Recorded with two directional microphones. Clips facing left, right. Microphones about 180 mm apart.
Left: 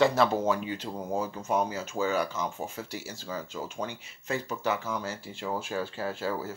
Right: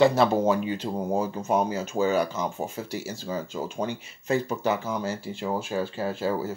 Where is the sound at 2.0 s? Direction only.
15° right (ahead or behind).